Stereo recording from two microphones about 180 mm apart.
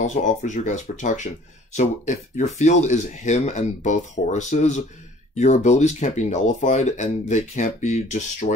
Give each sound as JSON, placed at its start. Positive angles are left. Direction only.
{"t": 0.0, "sound": "speech", "side_deg": 40}